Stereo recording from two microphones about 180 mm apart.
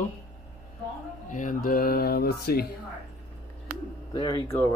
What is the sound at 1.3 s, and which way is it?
Speech, 45° left (ahead or behind).